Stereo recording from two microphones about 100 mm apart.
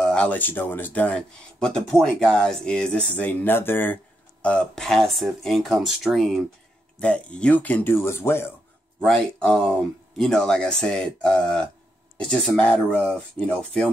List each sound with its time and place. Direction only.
0.0 s speech: 10° left (ahead or behind)
7.0 s speech: 10° left (ahead or behind)
9.0 s speech: 10° left (ahead or behind)